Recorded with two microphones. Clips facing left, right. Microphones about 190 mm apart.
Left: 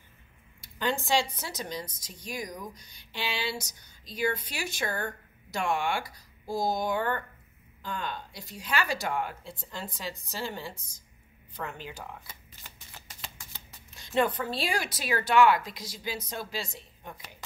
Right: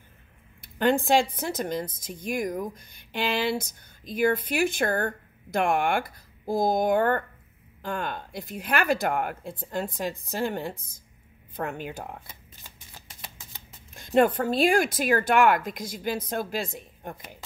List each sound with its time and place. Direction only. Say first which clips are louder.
0.6 s speech: right 8 dB; 55° right (ahead or behind)
12.6 s shuffling cards: even; 15° right (ahead or behind)
13.9 s speech: right 6 dB; 50° right (ahead or behind)